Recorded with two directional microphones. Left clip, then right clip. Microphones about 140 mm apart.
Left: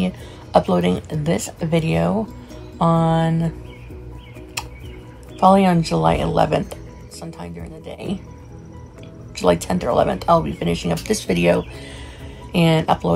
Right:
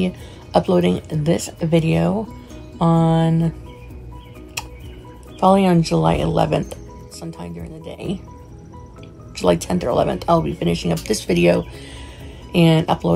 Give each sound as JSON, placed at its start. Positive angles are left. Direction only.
{"t": 0.0, "sound": "speech", "side_deg": -20}
{"t": 5.4, "sound": "speech", "side_deg": -20}
{"t": 9.3, "sound": "speech", "side_deg": -20}